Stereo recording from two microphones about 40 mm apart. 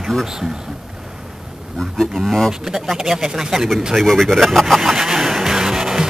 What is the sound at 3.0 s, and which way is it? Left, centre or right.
Speech, centre.